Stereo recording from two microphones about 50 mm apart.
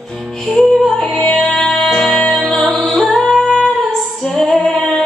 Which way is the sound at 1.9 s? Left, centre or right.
Centre.